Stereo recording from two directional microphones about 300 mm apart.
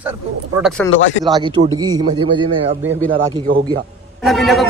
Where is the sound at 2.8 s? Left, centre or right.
Right.